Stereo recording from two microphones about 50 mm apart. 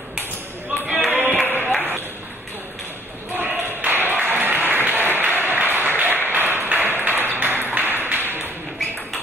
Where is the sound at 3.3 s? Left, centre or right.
Right.